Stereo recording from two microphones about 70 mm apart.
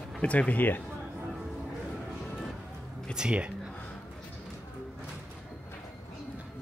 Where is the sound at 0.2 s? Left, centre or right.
Centre.